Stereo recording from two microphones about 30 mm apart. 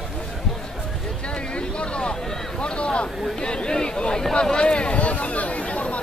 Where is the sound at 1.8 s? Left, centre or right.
Left.